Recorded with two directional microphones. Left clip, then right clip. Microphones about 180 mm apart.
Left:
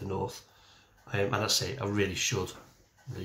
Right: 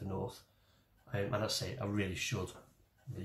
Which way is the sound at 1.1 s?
20° left (ahead or behind).